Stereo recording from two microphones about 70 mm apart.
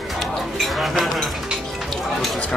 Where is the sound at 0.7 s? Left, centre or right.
Centre.